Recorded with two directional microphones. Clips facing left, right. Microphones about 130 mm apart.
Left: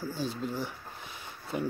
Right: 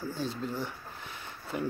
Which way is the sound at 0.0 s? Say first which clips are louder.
Left 1 dB; 5° left (ahead or behind).